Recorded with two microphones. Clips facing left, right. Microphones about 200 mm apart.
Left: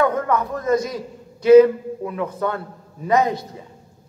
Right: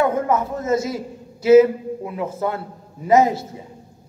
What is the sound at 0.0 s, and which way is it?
A man's voice, 25° right (ahead or behind).